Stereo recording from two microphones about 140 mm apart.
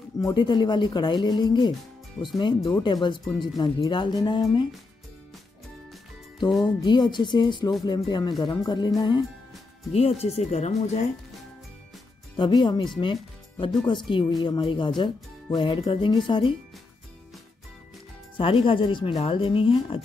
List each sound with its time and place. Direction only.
0.3 s speech: 35° left (ahead or behind)
6.6 s speech: 30° left (ahead or behind)
9.9 s speech: 45° left (ahead or behind)
12.4 s speech: 35° left (ahead or behind)
13.0 s music: 35° left (ahead or behind)
13.8 s speech: 35° left (ahead or behind)
18.4 s speech: 40° left (ahead or behind)